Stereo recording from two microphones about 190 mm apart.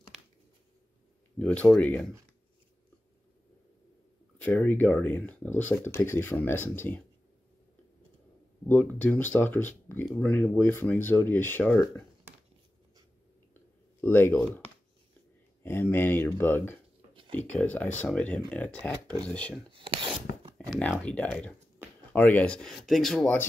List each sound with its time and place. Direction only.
0.1 s a sound: centre (ahead or behind)
1.4 s speech: 5° left (ahead or behind)
4.4 s speech: 10° left (ahead or behind)
8.6 s speech: 10° left (ahead or behind)
14.0 s speech: 10° left (ahead or behind)
17.1 s a sound: 25° right (ahead or behind)
17.5 s speech: 5° left (ahead or behind)
19.7 s speech: 25° right (ahead or behind)
20.5 s speech: 5° left (ahead or behind)